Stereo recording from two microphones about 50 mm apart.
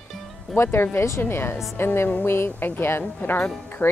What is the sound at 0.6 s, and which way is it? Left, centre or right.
Speech, left.